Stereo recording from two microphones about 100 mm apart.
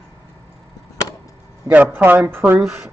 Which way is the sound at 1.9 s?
20° right (ahead or behind).